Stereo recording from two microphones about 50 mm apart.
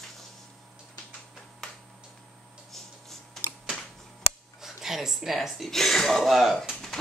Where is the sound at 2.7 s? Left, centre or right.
Centre.